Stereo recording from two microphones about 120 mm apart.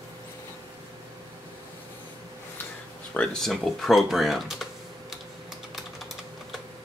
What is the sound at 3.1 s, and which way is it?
Speech, 10° left (ahead or behind).